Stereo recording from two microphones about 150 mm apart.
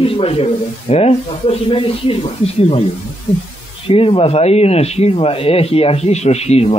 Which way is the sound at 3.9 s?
35° left (ahead or behind).